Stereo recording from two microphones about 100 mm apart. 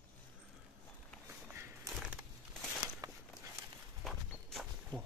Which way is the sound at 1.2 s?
25° right (ahead or behind).